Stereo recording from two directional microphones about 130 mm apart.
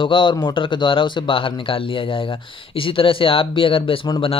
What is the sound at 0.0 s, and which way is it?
Speech, 40° left (ahead or behind).